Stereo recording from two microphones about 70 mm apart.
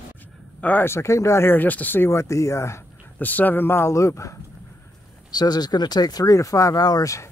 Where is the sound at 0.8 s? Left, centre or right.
Left.